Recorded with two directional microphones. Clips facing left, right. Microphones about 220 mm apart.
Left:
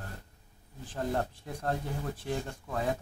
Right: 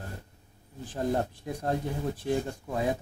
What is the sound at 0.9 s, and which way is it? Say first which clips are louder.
Speech: right 3 dB; 15° right (ahead or behind).